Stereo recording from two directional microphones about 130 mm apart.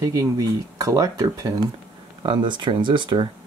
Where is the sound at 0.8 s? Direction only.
30° right (ahead or behind).